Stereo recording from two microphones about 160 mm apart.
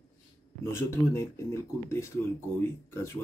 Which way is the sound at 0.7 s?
15° left (ahead or behind).